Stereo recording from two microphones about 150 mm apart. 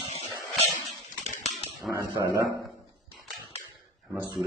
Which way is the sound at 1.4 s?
50° left (ahead or behind).